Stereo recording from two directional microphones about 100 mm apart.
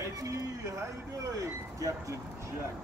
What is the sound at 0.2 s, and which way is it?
Speech, 30° right (ahead or behind).